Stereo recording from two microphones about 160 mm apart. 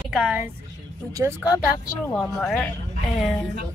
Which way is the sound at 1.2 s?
15° right (ahead or behind).